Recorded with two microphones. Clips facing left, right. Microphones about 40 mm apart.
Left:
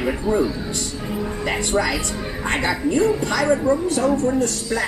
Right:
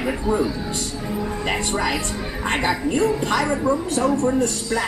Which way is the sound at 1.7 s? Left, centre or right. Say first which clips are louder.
Left 2 dB; right.